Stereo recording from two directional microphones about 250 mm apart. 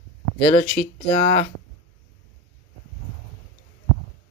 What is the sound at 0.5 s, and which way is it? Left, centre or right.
Speech, left.